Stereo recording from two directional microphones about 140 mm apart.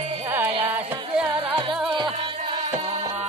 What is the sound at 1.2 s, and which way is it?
Music, 35° right (ahead or behind).